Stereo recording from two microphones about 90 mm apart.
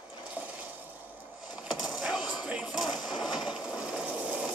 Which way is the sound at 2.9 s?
50° left (ahead or behind).